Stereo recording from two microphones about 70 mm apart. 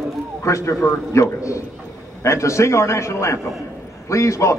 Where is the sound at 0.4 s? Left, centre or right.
Left.